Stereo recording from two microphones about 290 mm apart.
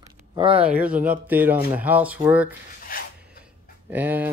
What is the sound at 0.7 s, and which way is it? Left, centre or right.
Speech, centre.